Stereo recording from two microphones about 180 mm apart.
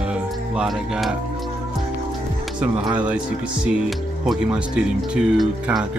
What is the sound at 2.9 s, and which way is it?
Speech, 10° right (ahead or behind).